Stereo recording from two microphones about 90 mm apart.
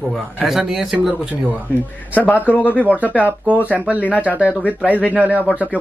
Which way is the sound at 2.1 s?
20° left (ahead or behind).